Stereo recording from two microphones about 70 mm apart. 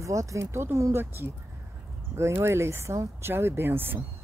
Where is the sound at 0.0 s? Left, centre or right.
Right.